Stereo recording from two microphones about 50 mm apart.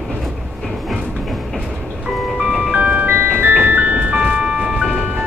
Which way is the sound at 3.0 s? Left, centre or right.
Right.